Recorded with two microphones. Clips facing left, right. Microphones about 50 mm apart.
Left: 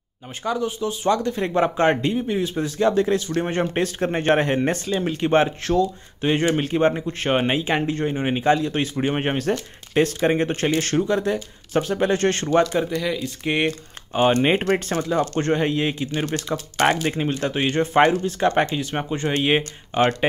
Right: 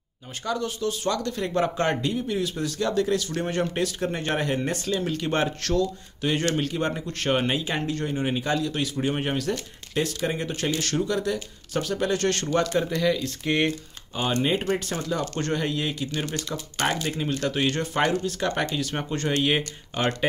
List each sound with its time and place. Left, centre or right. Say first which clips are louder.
0.4 s speech: left 4 dB; centre
12.7 s speech: even; centre
13.4 s speech: left 4 dB; centre
13.7 s speech: left 3 dB; left
16.5 s speech: left 7 dB; left